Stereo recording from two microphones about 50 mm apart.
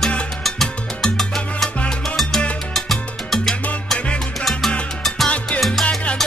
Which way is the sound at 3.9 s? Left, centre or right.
Left.